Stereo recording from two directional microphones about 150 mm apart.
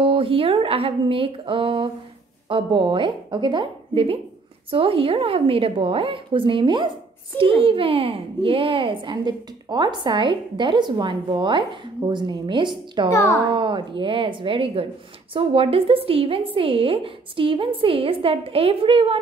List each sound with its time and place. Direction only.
0.0 s a child's voice: 35° right (ahead or behind)
13.1 s a woman's voice: 20° left (ahead or behind)
13.4 s a child's voice: 35° right (ahead or behind)